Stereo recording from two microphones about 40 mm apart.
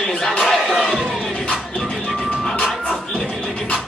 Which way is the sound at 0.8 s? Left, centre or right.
Centre.